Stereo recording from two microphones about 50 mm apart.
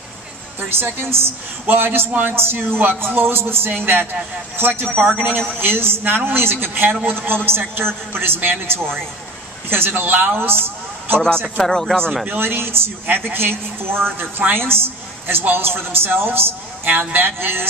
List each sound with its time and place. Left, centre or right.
0.6 s a woman's voice: right
11.4 s speech: centre
12.3 s a woman's voice: right
16.9 s a woman's voice: right